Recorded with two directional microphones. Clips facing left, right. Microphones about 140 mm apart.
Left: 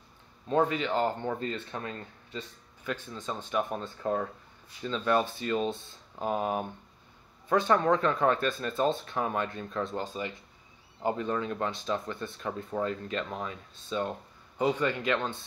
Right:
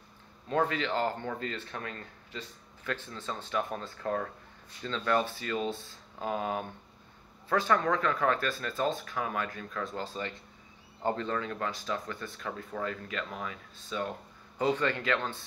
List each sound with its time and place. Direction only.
0.5 s speech: 20° left (ahead or behind)
14.6 s speech: 15° left (ahead or behind)